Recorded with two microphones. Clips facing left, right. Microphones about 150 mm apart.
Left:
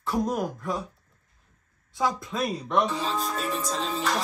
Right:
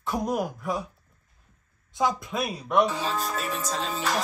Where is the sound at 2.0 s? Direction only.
20° right (ahead or behind).